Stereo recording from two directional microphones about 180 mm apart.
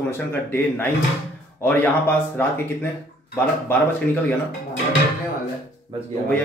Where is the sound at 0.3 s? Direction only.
10° left (ahead or behind).